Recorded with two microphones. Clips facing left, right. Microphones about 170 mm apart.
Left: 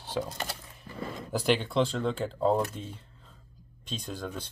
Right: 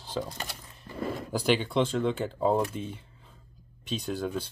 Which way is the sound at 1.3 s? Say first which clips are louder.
Even; centre (ahead or behind).